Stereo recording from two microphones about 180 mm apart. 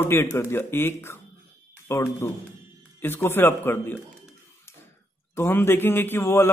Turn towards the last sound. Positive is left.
turn(degrees=15)  # may be behind; listen again after turning